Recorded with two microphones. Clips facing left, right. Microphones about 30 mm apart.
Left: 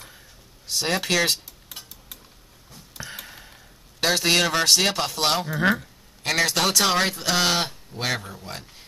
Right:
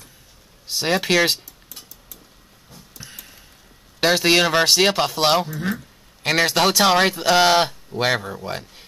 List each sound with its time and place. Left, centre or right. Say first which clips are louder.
0.7 s speech: right 4 dB; centre
3.1 s a sound: left 4 dB; left
4.0 s speech: right 4 dB; centre